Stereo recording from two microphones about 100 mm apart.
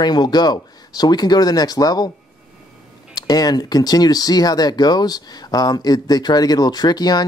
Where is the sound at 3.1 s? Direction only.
40° left (ahead or behind).